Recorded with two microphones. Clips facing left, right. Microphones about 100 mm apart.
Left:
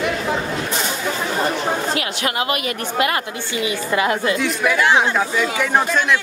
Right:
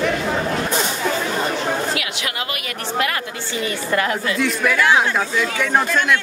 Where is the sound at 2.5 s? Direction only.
25° left (ahead or behind).